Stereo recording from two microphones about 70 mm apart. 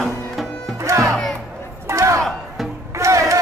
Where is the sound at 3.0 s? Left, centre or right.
Right.